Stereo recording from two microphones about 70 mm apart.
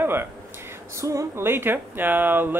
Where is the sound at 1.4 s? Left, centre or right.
Right.